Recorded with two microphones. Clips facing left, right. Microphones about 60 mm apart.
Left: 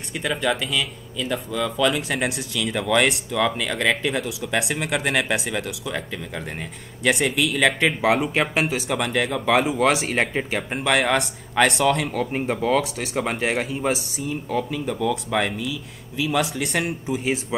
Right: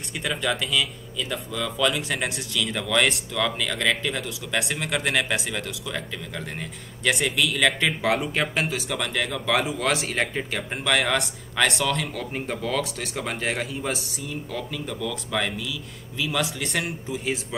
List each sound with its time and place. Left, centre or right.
0.1 s speech: centre; by 12.8 s left
12.8 s speech: centre
13.3 s speech: centre
13.9 s speech: centre
14.5 s speech: centre
16.2 s speech: centre